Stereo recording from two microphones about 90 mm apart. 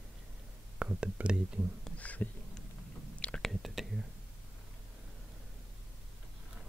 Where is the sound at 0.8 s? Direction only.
10° right (ahead or behind).